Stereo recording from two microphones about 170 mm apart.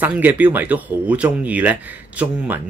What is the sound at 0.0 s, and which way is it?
Speech, 10° right (ahead or behind).